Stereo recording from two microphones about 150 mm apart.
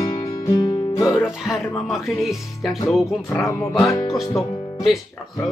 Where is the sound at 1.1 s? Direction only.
Centre (ahead or behind).